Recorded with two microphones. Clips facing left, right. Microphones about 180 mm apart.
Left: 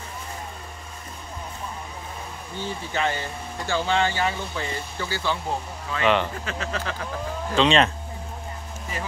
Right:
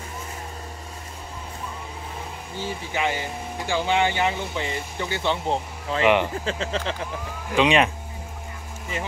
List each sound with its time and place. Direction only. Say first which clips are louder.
2.6 s speech: even; 10° right (ahead or behind); by 6.0 s 30° right (ahead or behind)
6.0 s speech: right 2 dB; 15° right (ahead or behind)
6.4 s speech: right 3 dB; 25° right (ahead or behind)
7.5 s speech: even; 10° right (ahead or behind)